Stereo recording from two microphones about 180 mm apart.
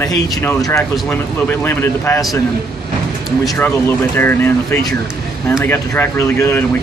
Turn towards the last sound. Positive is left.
turn(degrees=15)  # may be behind; listen again after turning